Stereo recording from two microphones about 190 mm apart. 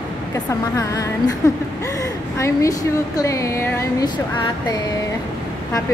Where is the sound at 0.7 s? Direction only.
20° left (ahead or behind).